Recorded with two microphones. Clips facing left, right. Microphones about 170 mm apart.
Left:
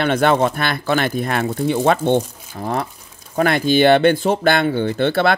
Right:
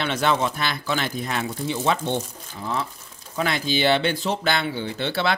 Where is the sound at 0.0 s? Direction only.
55° left (ahead or behind).